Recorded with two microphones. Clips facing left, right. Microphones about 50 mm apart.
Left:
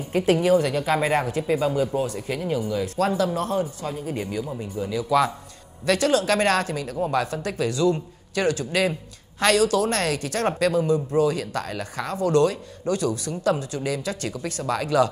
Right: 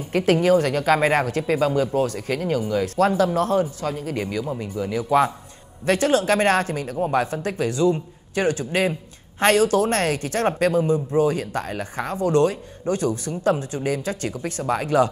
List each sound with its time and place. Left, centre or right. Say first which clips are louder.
0.1 s speech: right 2 dB; right
5.9 s a man's voice: right 2 dB; right